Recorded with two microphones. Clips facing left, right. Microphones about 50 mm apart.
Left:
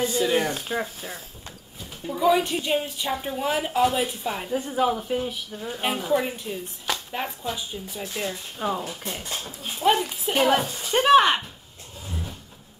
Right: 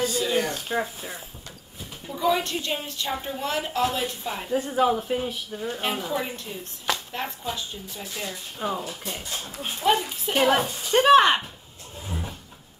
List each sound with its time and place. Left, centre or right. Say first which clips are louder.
0.0 s speech: left 2 dB; left
0.5 s speech: even; centre
2.0 s a woman's voice: left 3 dB; centre
4.5 s a woman's voice: right 2 dB; centre
8.5 s speech: even; centre
12.1 s vehicle: right 1 dB; right